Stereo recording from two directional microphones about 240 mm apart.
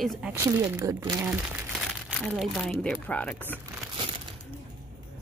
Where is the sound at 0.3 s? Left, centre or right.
Centre.